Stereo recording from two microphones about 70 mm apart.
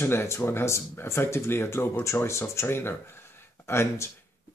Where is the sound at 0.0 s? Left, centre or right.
Left.